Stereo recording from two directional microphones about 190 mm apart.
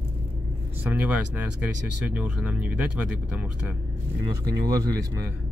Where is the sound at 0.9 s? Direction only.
5° right (ahead or behind).